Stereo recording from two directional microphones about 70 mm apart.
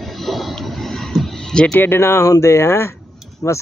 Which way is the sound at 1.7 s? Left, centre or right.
Left.